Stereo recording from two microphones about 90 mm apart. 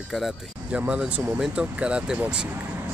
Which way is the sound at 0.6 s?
15° right (ahead or behind).